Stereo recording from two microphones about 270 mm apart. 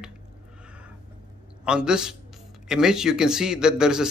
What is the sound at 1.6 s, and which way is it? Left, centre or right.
A man's voice, centre.